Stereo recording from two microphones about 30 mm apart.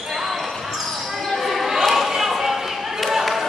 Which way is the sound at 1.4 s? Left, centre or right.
Centre.